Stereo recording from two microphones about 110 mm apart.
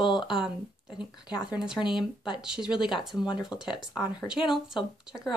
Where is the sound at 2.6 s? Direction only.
45° left (ahead or behind).